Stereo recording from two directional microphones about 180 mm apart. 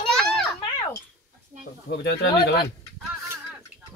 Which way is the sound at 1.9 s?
65° left (ahead or behind).